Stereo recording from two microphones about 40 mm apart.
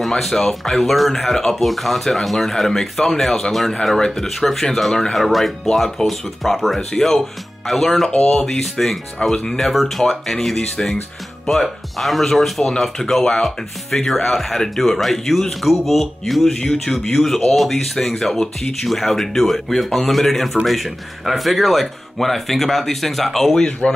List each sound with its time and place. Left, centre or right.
0.0 s speech: centre
16.4 s speech: centre
23.8 s speech: left